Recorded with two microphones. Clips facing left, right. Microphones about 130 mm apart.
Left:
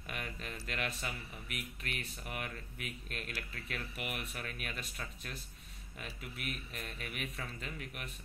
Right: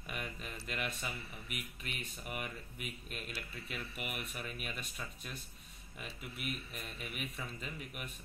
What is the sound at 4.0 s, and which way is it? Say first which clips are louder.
A man's voice: left 1 dB; centre (ahead or behind).